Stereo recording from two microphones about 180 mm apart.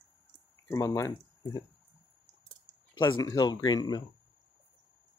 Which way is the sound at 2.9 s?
20° left (ahead or behind).